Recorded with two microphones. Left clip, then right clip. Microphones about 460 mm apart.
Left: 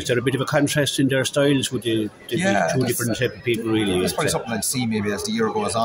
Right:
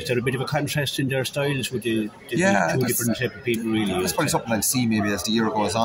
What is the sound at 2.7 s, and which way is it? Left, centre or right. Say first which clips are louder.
Speech: left 1 dB; right.